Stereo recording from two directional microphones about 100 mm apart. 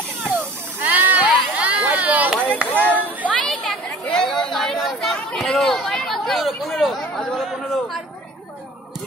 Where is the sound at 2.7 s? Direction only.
15° left (ahead or behind).